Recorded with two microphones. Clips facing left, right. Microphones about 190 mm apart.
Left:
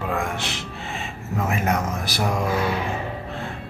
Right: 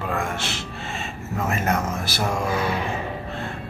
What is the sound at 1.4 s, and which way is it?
Speech, 15° left (ahead or behind).